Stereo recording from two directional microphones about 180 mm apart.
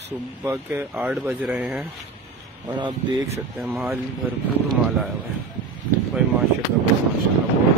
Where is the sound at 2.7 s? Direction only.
25° right (ahead or behind).